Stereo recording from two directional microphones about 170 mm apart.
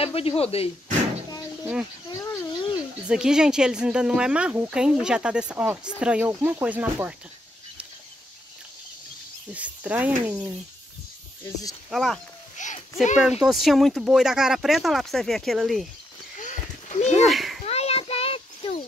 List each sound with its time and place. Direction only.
0.0 s speech: 35° left (ahead or behind)
2.0 s a sound: 20° left (ahead or behind)
3.1 s speech: 5° right (ahead or behind)
9.5 s speech: 10° right (ahead or behind)
11.9 s speech: centre (ahead or behind)
12.6 s a sound: 45° left (ahead or behind)
13.2 s speech: 5° right (ahead or behind)
16.3 s a sound: 45° left (ahead or behind)
17.2 s children playing: centre (ahead or behind)
17.6 s child singing: 35° left (ahead or behind)